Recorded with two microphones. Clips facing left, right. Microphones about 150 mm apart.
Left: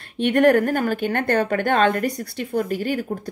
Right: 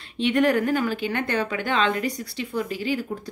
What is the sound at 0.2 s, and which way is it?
A woman's voice, 55° left (ahead or behind).